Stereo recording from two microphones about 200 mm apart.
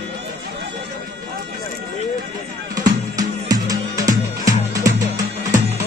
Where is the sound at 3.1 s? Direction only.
20° right (ahead or behind).